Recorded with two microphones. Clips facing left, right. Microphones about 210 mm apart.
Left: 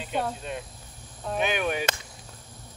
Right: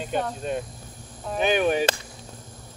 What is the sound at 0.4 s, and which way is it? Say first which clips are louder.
Speech: right 7 dB; 40° right (ahead or behind).